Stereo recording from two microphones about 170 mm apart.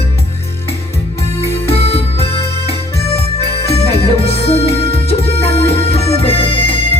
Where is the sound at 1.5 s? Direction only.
35° left (ahead or behind).